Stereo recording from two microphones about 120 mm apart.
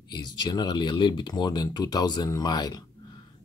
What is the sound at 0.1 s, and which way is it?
Speech, 35° left (ahead or behind).